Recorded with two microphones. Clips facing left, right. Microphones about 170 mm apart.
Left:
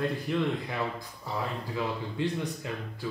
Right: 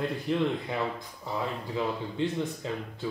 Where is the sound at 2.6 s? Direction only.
25° right (ahead or behind).